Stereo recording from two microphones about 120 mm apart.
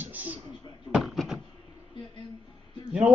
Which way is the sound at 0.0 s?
15° right (ahead or behind).